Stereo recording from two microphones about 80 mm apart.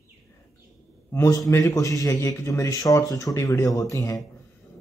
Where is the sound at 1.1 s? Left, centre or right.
Left.